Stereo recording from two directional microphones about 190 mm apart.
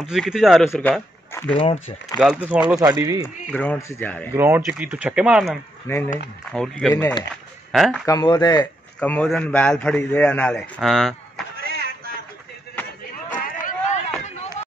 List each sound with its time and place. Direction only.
0.0 s speech: centre (ahead or behind)
1.6 s speech: 30° left (ahead or behind)
2.1 s speech: 5° right (ahead or behind)
2.8 s speech: 15° right (ahead or behind)
3.5 s a man's voice: 10° left (ahead or behind)
4.4 s speech: 10° right (ahead or behind)
5.9 s a man's voice: 15° left (ahead or behind)
7.7 s speech: centre (ahead or behind)
8.0 s speech: 20° left (ahead or behind)
9.0 s a man's voice: 5° left (ahead or behind)
11.6 s a sound: 55° right (ahead or behind)
13.3 s a sound: 45° left (ahead or behind)